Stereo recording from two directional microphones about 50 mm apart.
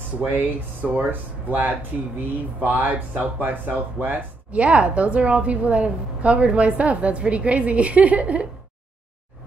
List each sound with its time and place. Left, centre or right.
0.2 s speech: right
0.8 s speech: centre
1.5 s speech: right